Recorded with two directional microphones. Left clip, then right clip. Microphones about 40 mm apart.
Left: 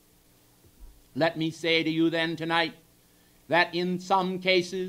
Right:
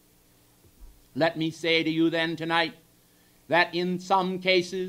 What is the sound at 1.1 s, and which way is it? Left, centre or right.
A man's voice, left.